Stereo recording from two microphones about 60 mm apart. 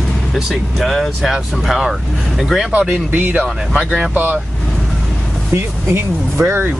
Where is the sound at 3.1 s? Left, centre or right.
Right.